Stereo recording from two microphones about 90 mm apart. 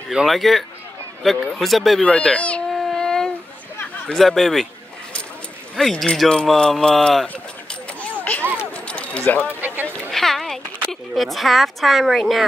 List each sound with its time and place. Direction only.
0.1 s speech: 5° right (ahead or behind)
2.7 s a sound: 5° left (ahead or behind)
4.0 s speech: 5° left (ahead or behind)
5.8 s speech: 5° left (ahead or behind)
8.0 s a sound: 15° left (ahead or behind)
10.1 s speech: 5° left (ahead or behind)